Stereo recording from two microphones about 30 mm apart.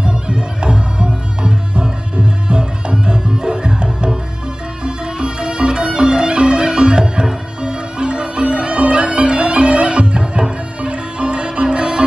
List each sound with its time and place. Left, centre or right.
0.0 s music: right